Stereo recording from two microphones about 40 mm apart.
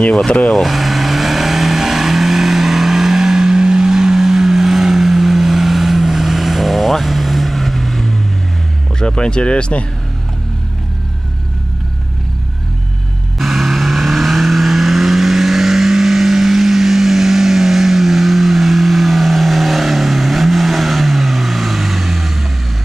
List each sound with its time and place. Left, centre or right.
0.5 s vehicle: centre
9.0 s speech: left
13.4 s vehicle: centre